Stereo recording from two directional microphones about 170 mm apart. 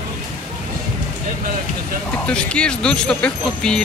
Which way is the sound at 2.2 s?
5° left (ahead or behind).